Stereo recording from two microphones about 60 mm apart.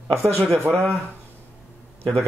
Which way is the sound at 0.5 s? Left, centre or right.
Right.